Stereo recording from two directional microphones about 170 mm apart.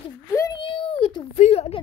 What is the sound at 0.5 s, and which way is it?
A child's voice, 30° left (ahead or behind).